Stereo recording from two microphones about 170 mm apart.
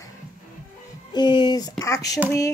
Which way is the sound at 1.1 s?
25° left (ahead or behind).